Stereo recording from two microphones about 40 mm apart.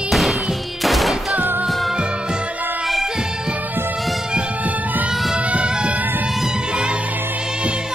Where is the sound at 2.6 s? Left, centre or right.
Right.